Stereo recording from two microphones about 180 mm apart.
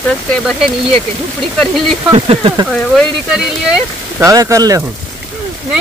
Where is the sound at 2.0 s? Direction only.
30° right (ahead or behind).